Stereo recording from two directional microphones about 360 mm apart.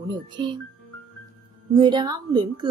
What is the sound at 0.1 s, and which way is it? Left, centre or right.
Speech, centre.